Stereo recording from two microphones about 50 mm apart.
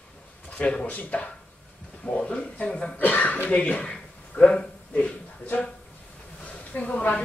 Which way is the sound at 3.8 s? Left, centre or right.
Centre.